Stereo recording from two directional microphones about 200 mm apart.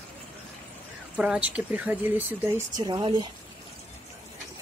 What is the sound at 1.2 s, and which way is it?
Speech, 5° right (ahead or behind).